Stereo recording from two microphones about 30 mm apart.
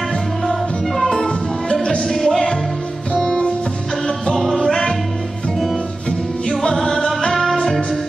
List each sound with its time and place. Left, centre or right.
0.5 s music: centre
1.2 s music: left
2.0 s music: centre
3.3 s music: left
4.6 s music: centre
6.7 s music: centre